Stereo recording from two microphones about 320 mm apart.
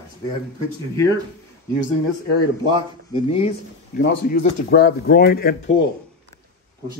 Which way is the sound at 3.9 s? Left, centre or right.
Left.